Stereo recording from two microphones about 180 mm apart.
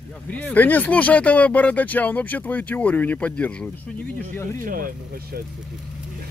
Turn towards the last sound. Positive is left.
turn(degrees=-50)  # may be behind; listen again after turning